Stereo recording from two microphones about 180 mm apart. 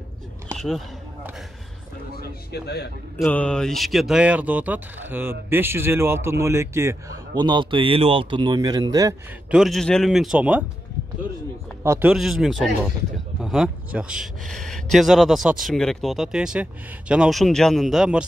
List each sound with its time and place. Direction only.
0.6 s speech: centre (ahead or behind)
2.1 s speech: 60° left (ahead or behind)
3.3 s speech: 5° left (ahead or behind); by 9.1 s 20° right (ahead or behind)
9.5 s speech: centre (ahead or behind)
11.8 s a man's voice: 15° right (ahead or behind)
12.1 s speech: centre (ahead or behind)